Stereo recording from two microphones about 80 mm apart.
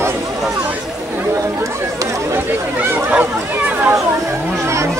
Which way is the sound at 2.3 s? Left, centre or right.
Right.